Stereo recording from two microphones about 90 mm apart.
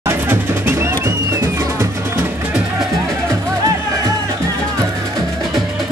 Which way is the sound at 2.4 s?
10° right (ahead or behind).